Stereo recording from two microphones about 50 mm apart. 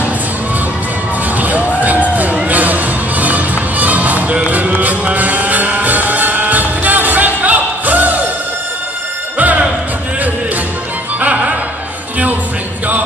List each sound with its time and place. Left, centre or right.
1.3 s crowd: right
1.8 s music: right
9.4 s music: right
11.1 s music: right